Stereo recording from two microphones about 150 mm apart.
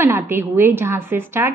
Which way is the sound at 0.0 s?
15° right (ahead or behind).